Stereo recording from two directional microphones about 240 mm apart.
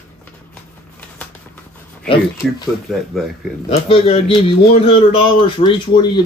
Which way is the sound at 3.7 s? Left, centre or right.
Left.